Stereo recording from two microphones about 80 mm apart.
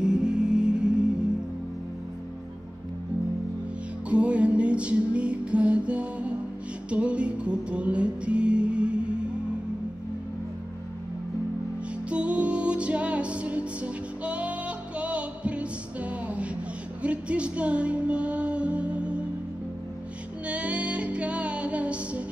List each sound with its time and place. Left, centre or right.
0.0 s music: centre
4.1 s music: centre
12.1 s music: centre
20.4 s music: centre